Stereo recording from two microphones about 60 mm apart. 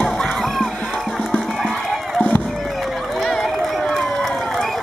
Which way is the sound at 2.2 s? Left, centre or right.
Left.